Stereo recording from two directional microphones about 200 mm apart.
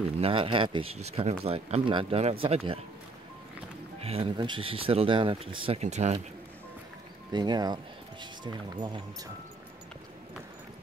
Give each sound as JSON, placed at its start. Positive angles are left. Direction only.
{"t": 0.2, "sound": "speech", "side_deg": -25}
{"t": 4.0, "sound": "speech", "side_deg": -30}
{"t": 7.3, "sound": "speech", "side_deg": -20}